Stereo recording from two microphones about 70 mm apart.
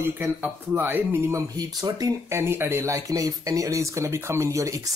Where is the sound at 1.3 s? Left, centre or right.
Right.